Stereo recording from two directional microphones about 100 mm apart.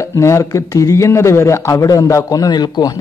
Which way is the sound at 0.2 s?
30° left (ahead or behind).